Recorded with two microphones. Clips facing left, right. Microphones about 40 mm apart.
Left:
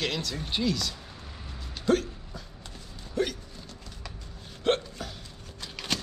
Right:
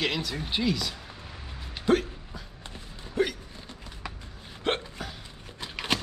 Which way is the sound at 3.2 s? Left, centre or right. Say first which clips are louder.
Right 2 dB; centre.